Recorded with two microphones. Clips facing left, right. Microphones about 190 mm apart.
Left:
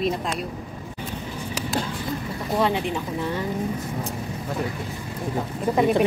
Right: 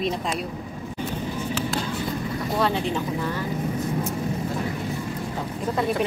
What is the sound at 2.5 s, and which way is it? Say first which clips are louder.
Speech: left 2 dB; 15° left (ahead or behind).